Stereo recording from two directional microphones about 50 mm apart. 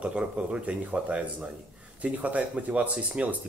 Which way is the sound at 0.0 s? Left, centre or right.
Right.